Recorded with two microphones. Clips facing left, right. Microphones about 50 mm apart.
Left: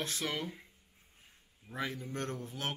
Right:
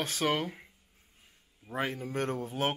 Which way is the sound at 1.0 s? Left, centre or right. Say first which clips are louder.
Left 2 dB; centre.